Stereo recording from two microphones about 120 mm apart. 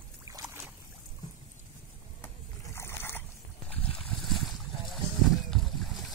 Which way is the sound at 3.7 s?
Centre (ahead or behind).